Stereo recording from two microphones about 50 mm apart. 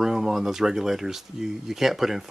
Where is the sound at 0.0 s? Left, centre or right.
Centre.